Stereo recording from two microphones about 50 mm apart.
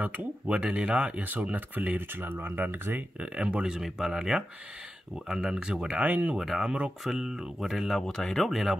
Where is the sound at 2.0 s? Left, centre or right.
Right.